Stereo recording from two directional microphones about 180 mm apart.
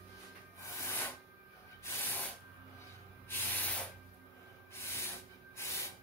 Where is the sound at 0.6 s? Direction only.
15° left (ahead or behind).